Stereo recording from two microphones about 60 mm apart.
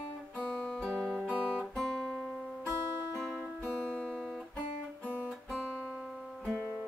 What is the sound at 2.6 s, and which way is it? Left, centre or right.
Music, right.